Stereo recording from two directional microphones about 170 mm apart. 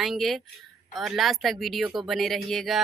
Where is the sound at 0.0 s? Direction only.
Centre (ahead or behind).